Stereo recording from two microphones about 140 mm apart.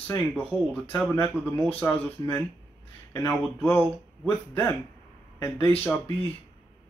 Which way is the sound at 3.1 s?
20° left (ahead or behind).